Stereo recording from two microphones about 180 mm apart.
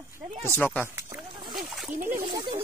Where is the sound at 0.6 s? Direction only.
10° left (ahead or behind).